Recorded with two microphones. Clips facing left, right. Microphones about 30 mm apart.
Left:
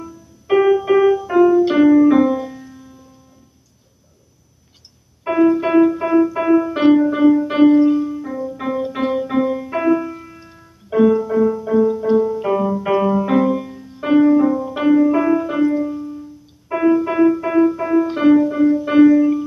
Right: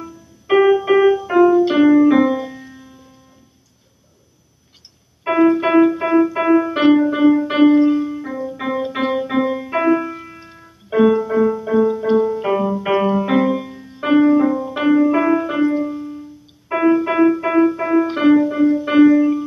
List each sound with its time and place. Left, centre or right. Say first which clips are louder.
0.5 s music: right 1 dB; centre
5.2 s music: right 1 dB; centre